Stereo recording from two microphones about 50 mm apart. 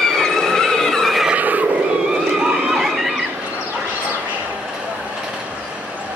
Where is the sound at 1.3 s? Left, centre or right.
Right.